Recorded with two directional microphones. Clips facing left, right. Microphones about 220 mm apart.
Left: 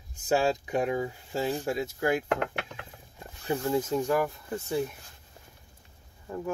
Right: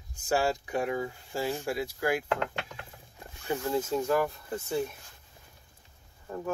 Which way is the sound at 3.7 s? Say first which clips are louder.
Left 1 dB; 15° left (ahead or behind).